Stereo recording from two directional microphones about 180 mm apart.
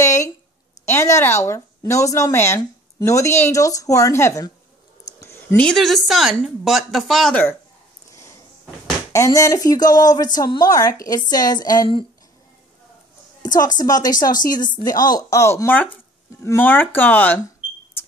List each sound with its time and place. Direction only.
0.0 s a sound: 15° left (ahead or behind)
0.8 s speech: 15° left (ahead or behind)
5.2 s a sound: 15° left (ahead or behind)
5.6 s speech: 5° left (ahead or behind)
9.1 s speech: 15° left (ahead or behind)
13.4 s speech: 20° left (ahead or behind)